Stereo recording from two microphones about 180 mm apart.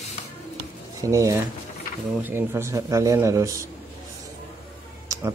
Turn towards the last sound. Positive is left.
turn(degrees=-20)  # may be behind; listen again after turning